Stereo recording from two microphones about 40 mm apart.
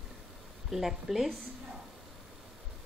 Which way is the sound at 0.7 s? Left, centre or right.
Centre.